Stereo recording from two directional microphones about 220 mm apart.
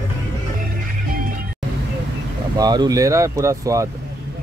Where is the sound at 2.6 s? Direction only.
20° right (ahead or behind).